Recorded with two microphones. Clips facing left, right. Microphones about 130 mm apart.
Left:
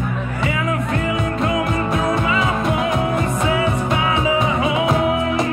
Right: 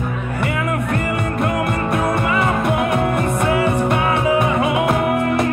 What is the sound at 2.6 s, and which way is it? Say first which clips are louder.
Music: right 1 dB; 60° right (ahead or behind).